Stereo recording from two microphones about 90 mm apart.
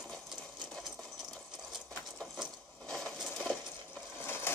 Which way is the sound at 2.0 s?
5° left (ahead or behind).